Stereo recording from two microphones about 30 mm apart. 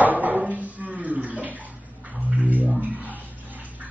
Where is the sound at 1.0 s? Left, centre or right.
Right.